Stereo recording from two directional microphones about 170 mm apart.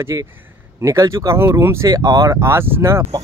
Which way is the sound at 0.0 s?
20° right (ahead or behind).